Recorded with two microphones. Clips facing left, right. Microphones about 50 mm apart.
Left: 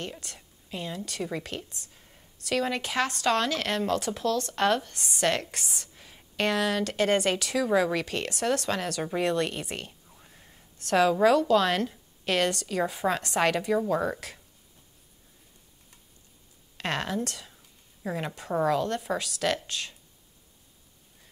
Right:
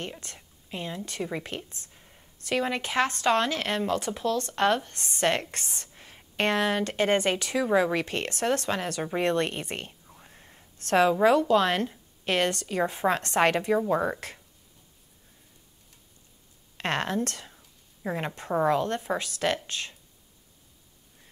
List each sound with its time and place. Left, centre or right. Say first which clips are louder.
0.0 s speech: even; centre
2.0 s a sound: right 1 dB; centre
2.4 s speech: even; centre
4.9 s speech: left 2 dB; centre
5.2 s speech: right 1 dB; right
5.8 s a sound: even; right
6.3 s speech: right 1 dB; right
8.6 s speech: even; right
10.0 s whispering: right 2 dB; centre
10.8 s a woman's voice: right 1 dB; right
11.1 s speech: left 1 dB; right
13.9 s speech: right 1 dB; centre
16.7 s speech: right 2 dB; right
18.0 s speech: right 1 dB; right